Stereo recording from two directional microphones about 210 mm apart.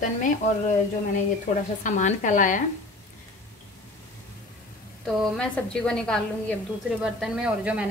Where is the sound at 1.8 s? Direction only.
35° left (ahead or behind).